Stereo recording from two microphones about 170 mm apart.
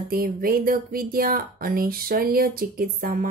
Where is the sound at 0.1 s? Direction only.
60° right (ahead or behind).